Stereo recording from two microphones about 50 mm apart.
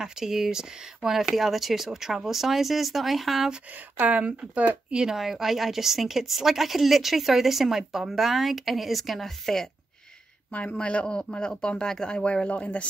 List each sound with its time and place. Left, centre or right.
0.0 s speech: centre
4.0 s speech: right
5.1 s speech: centre
10.5 s speech: left